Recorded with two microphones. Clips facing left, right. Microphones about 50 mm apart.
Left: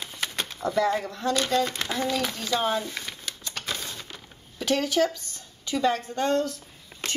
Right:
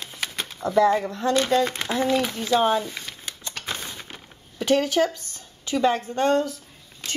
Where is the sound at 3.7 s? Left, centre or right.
Right.